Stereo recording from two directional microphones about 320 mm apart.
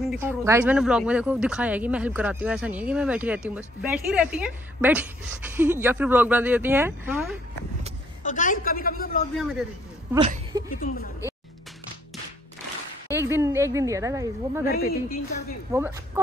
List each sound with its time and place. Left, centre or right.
0.1 s speech: centre
8.2 s a woman's voice: left
9.4 s speech: centre
10.1 s speech: centre
10.8 s a woman's voice: left
13.1 s speech: centre
14.7 s a woman's voice: left
15.7 s speech: centre